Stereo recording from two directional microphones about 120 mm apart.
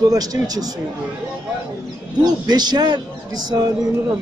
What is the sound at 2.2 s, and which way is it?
Speech, 35° right (ahead or behind).